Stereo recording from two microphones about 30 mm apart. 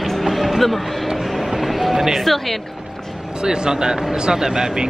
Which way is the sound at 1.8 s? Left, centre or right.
Centre.